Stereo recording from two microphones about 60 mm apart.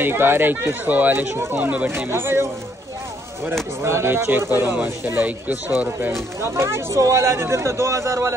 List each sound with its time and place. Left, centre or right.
0.0 s speech: right
1.9 s a man's voice: right
3.8 s a man's voice: right
6.4 s a man's voice: right